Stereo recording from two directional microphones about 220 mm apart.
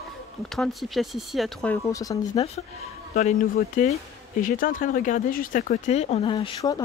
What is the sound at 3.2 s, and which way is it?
Speech, 35° left (ahead or behind).